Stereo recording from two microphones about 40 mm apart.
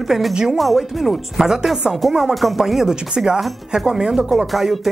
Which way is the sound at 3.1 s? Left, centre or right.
Right.